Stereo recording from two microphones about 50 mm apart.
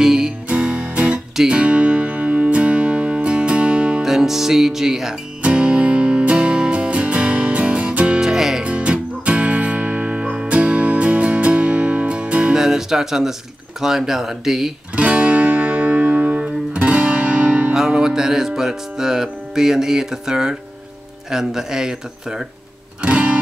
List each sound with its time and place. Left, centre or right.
0.0 s music: centre
0.5 s music: right
4.0 s speech: centre
5.4 s music: right
8.2 s music: centre
8.6 s music: right
12.5 s music: centre
13.7 s speech: centre
15.0 s music: right
17.7 s music: centre
21.3 s speech: centre
23.0 s music: right